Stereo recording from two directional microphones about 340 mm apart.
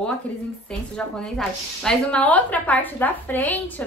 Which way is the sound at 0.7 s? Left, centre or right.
Centre.